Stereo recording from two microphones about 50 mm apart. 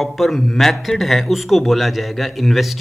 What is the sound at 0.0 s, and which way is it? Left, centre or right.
Speech, centre.